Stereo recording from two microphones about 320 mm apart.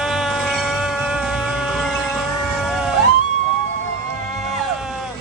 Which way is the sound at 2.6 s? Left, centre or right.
Centre.